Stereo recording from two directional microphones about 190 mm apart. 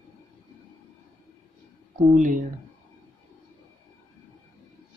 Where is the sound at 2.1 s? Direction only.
45° right (ahead or behind).